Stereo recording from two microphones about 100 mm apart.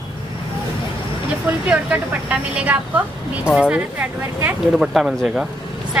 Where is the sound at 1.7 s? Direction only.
15° right (ahead or behind).